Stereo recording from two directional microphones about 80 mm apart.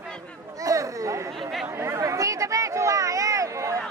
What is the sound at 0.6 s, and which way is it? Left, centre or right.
Chatter, right.